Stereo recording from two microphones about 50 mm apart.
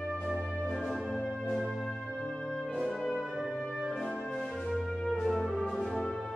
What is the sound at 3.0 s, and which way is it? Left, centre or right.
Music, centre.